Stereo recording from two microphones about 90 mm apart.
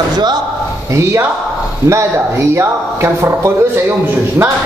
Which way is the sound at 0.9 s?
35° right (ahead or behind).